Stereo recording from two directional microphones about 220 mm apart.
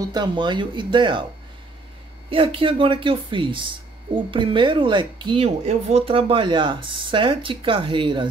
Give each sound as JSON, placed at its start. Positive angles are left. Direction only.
{"t": 0.0, "sound": "a woman's voice", "side_deg": -20}
{"t": 2.2, "sound": "a woman's voice", "side_deg": -25}